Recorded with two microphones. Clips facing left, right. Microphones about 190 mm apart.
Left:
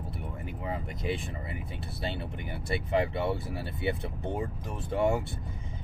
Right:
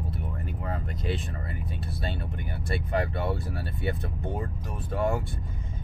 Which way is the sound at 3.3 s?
20° left (ahead or behind).